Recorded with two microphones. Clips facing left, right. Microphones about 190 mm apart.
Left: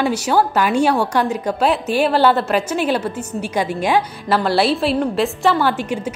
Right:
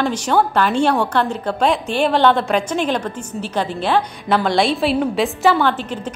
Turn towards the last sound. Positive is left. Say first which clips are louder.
# left 1 dB
turn(degrees=10)  # may be behind; listen again after turning